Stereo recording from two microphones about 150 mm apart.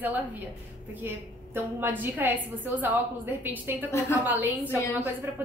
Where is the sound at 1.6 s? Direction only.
10° right (ahead or behind).